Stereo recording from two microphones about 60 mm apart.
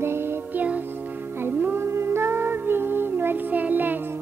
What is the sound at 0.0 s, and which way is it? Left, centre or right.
Music, right.